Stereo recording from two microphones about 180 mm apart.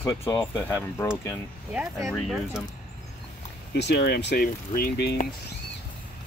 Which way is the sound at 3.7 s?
70° left (ahead or behind).